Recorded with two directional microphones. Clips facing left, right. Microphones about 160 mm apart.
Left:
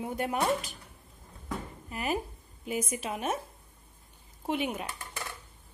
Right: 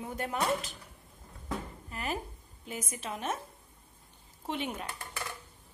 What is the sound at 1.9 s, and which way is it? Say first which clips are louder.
A woman's voice: left 4 dB; 10° left (ahead or behind).